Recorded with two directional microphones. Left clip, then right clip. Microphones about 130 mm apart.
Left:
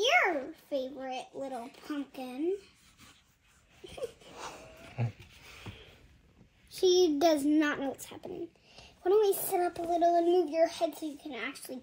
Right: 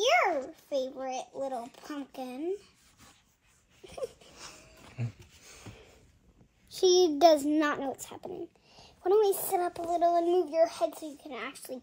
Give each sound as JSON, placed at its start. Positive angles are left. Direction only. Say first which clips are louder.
{"t": 0.0, "sound": "babbling", "louder": "right 1 dB", "side_deg": -20}
{"t": 1.5, "sound": "speech", "louder": "right 1 dB", "side_deg": -20}
{"t": 3.8, "sound": "a sound", "louder": "right 2 dB", "side_deg": -20}
{"t": 4.3, "sound": "a sound", "louder": "left 5 dB", "side_deg": -5}
{"t": 6.7, "sound": "a child's voice", "louder": "right 2 dB", "side_deg": -45}
{"t": 8.3, "sound": "a child's voice", "louder": "left 1 dB", "side_deg": -20}